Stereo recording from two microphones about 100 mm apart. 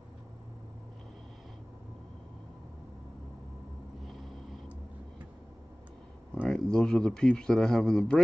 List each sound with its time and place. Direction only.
6.4 s a man's voice: 5° left (ahead or behind)